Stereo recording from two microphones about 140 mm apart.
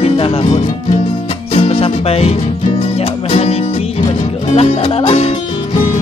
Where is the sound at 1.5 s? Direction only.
40° left (ahead or behind).